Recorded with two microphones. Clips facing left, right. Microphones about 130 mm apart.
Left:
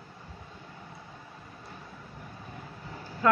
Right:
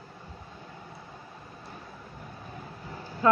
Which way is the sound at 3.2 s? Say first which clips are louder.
Right 1 dB; 25° right (ahead or behind).